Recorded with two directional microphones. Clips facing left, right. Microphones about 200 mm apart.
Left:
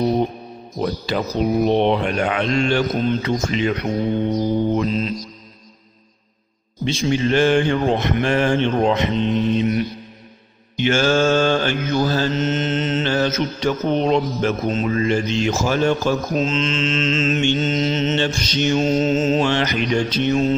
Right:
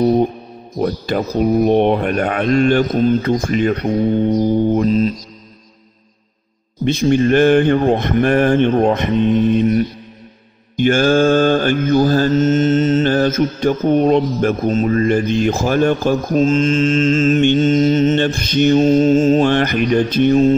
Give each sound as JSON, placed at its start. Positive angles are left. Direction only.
{"t": 0.7, "sound": "mantra", "side_deg": -50}
{"t": 6.8, "sound": "mantra", "side_deg": -55}